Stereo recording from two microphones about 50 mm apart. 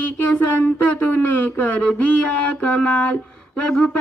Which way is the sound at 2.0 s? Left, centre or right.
Left.